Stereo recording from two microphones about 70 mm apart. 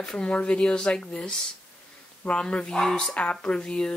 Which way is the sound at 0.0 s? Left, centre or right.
Centre.